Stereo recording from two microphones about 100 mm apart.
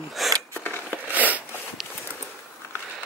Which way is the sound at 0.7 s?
20° left (ahead or behind).